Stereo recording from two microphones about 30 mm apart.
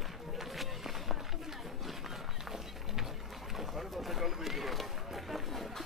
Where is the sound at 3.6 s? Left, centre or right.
Centre.